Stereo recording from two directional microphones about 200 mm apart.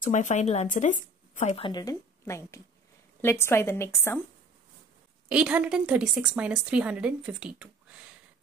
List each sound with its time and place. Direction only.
0.0 s speech: 35° left (ahead or behind)
1.7 s a woman's voice: 20° left (ahead or behind)
5.3 s a woman's voice: 5° right (ahead or behind)